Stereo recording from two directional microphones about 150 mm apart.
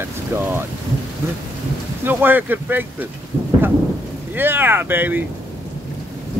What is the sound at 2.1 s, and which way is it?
Speech, 10° right (ahead or behind).